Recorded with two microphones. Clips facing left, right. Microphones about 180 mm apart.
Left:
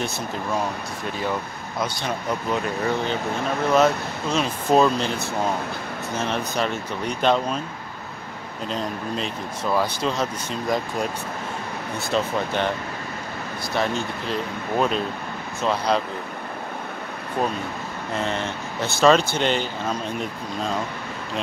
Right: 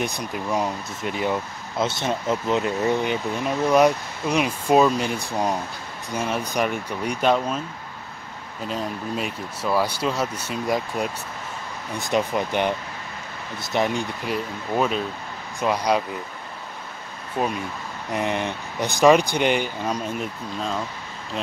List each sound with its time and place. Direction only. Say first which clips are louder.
0.0 s speech: even; 15° right (ahead or behind)
8.6 s speech: even; 5° right (ahead or behind)
12.1 s speech: right 1 dB; 15° right (ahead or behind)
13.7 s speech: right 2 dB; 15° right (ahead or behind)
18.1 s speech: right 2 dB; 15° right (ahead or behind)